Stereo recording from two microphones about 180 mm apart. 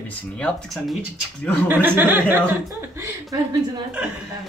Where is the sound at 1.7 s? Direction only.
10° right (ahead or behind).